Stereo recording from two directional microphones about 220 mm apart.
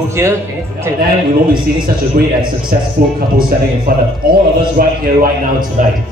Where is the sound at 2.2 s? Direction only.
45° right (ahead or behind).